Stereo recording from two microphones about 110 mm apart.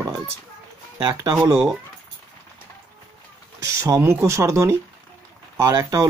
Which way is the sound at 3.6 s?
30° right (ahead or behind).